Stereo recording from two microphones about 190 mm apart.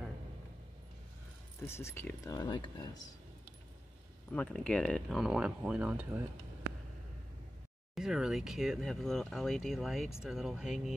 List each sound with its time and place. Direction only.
1.7 s speech: 15° left (ahead or behind)
4.3 s speech: 5° left (ahead or behind)
7.9 s speech: centre (ahead or behind)